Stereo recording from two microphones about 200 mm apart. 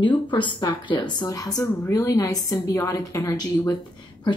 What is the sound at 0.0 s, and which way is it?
A woman's voice, 25° left (ahead or behind).